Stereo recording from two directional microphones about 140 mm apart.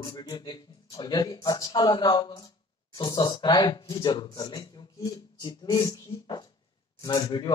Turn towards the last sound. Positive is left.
turn(degrees=30)  # may be behind; listen again after turning